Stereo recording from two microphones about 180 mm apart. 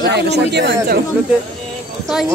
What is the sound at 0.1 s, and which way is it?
Speech, 70° right (ahead or behind).